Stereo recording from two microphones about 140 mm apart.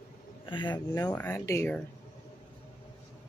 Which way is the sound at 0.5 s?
35° left (ahead or behind).